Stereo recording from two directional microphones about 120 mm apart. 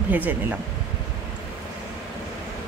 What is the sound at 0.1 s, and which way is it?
Speech, 15° right (ahead or behind).